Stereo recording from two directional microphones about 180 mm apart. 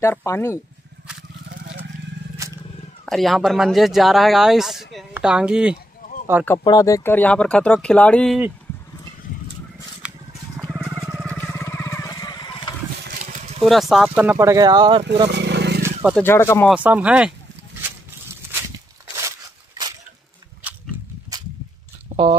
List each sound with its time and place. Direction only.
0.0 s speech: 15° left (ahead or behind)
3.1 s speech: centre (ahead or behind)
6.6 s speech: 20° left (ahead or behind); by 8.4 s 5° left (ahead or behind)
10.6 s a sound: 5° right (ahead or behind)
11.3 s a sound: 10° left (ahead or behind)
13.2 s vehicle: 40° right (ahead or behind)
13.6 s speech: centre (ahead or behind); by 15.0 s 25° right (ahead or behind)
15.2 s vehicle: 70° right (ahead or behind)
15.8 s wild animals: 10° right (ahead or behind)
16.2 s speech: 15° left (ahead or behind)
16.6 s speech: 5° right (ahead or behind)
17.8 s a sound: 15° right (ahead or behind)